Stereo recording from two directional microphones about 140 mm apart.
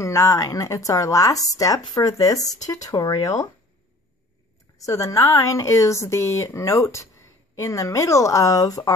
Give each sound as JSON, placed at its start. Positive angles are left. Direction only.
{"t": 0.0, "sound": "speech", "side_deg": 20}
{"t": 4.7, "sound": "speech", "side_deg": 25}